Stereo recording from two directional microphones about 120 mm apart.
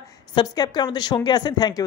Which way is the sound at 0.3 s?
35° left (ahead or behind).